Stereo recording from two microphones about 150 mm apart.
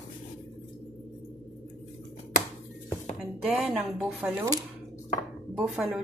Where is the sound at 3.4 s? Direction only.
Centre (ahead or behind).